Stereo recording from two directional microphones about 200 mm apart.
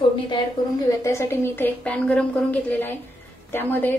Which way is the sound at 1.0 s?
15° left (ahead or behind).